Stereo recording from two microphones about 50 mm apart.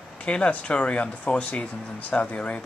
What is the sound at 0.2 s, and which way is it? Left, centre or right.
Speech, left.